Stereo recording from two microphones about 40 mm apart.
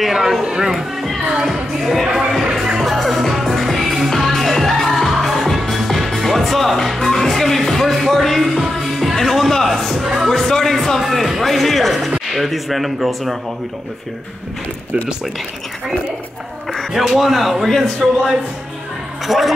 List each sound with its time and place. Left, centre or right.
0.1 s speech: centre
2.8 s music: centre
9.9 s a man's voice: centre
10.3 s a man's voice: centre
16.9 s a man's voice: centre
18.0 s speech: right
19.2 s speech: centre